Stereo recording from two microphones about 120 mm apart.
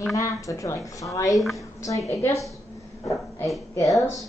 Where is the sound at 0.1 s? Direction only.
25° left (ahead or behind).